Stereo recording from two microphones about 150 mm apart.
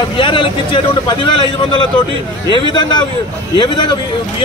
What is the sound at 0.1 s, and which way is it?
A man's voice, 35° left (ahead or behind).